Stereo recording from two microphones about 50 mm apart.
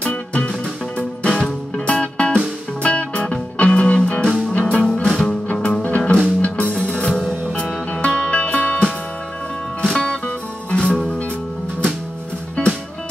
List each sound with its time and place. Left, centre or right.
0.0 s music: left
6.9 s music: centre